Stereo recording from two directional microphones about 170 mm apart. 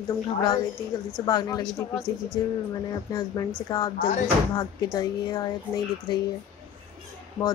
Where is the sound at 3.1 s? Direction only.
20° left (ahead or behind).